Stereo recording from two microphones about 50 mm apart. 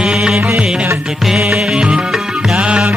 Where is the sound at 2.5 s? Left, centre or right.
Centre.